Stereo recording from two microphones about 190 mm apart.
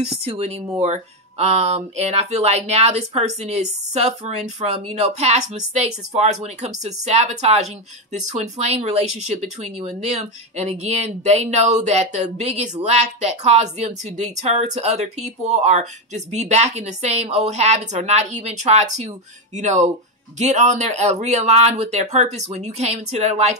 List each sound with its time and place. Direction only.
0.3 s speech: 30° right (ahead or behind)